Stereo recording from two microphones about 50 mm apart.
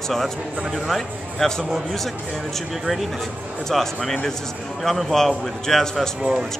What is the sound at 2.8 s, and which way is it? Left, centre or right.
Speech, centre.